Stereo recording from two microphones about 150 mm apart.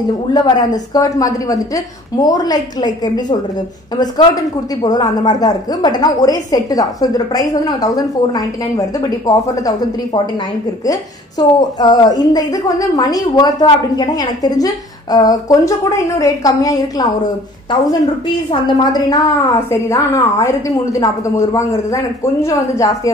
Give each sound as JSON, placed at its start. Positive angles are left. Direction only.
{"t": 0.3, "sound": "speech", "side_deg": 25}
{"t": 18.5, "sound": "speech", "side_deg": 25}